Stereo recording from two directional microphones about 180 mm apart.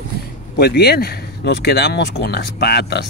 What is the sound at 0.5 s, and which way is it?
Speech, 60° left (ahead or behind).